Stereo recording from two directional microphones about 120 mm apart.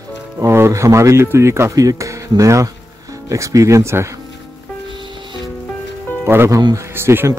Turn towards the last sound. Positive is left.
turn(degrees=-20)  # may be behind; listen again after turning